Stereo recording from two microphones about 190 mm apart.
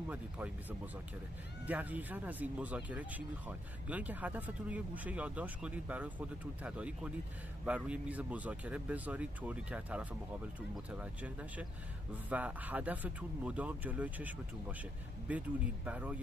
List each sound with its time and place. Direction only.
0.1 s speech: 10° right (ahead or behind)